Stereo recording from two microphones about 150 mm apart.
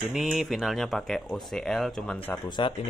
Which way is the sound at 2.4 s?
30° left (ahead or behind).